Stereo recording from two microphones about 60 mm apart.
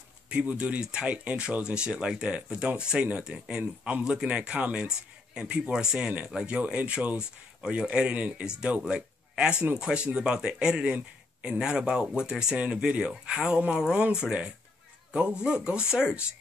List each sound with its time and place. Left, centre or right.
0.3 s speech: right